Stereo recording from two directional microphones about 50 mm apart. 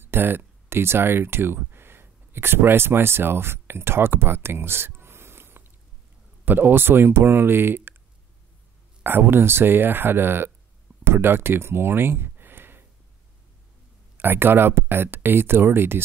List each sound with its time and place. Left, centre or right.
0.0 s speech: right
9.0 s speech: right
14.1 s speech: right